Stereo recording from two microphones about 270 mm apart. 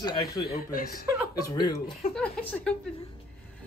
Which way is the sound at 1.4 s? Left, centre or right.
Centre.